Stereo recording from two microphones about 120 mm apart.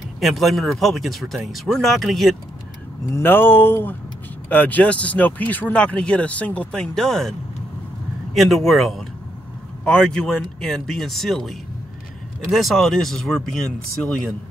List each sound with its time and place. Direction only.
0.2 s speech: centre (ahead or behind)
3.2 s speech: 15° left (ahead or behind)
8.4 s speech: centre (ahead or behind)